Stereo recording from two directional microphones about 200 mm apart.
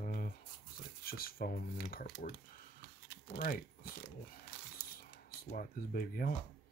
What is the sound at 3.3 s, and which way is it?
Speech, 45° left (ahead or behind).